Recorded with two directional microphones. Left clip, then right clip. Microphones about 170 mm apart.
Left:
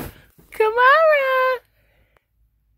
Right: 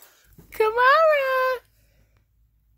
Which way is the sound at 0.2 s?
Centre (ahead or behind).